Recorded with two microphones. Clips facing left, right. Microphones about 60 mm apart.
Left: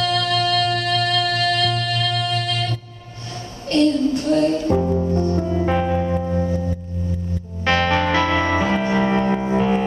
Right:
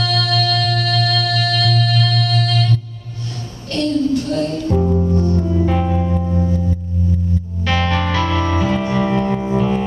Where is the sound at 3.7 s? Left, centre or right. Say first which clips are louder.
Even; centre.